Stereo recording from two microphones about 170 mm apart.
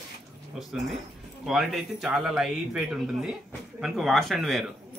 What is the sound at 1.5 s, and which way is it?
Speech, centre (ahead or behind).